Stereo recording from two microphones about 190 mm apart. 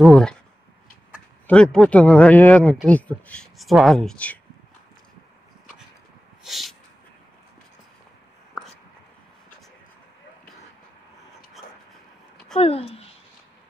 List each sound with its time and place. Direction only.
0.0 s speech: 5° left (ahead or behind)
1.5 s speech: 5° left (ahead or behind)
6.4 s a sound: centre (ahead or behind)
12.5 s speech: 30° left (ahead or behind)